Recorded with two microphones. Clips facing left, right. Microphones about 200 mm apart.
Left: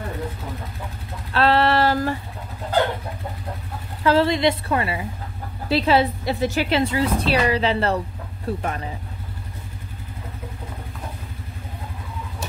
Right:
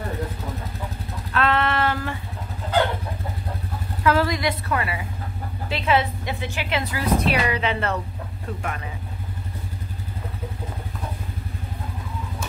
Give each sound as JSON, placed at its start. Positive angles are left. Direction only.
{"t": 1.3, "sound": "female singing", "side_deg": 30}
{"t": 4.0, "sound": "a woman's voice", "side_deg": 30}